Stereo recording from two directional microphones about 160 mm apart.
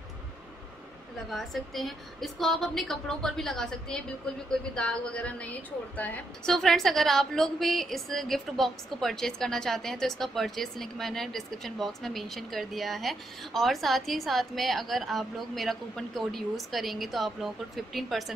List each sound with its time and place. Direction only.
1.3 s a woman's voice: centre (ahead or behind)